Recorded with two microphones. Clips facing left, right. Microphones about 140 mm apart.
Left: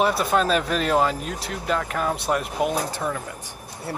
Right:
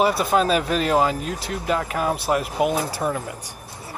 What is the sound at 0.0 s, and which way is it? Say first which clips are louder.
Speech: right 2 dB; centre (ahead or behind).